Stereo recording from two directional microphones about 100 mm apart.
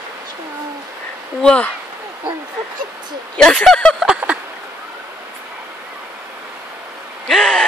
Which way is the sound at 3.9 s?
10° right (ahead or behind).